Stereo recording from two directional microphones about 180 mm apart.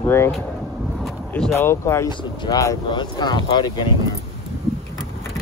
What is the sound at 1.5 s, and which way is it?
Speech, 15° left (ahead or behind).